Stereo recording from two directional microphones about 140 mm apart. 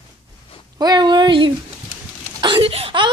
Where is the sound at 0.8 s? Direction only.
30° right (ahead or behind).